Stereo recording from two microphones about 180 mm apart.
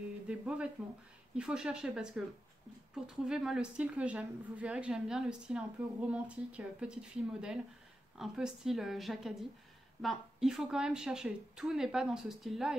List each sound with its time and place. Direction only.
0.3 s a woman's voice: 5° right (ahead or behind)